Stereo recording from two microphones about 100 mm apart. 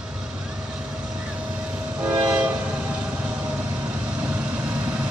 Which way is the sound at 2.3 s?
10° right (ahead or behind).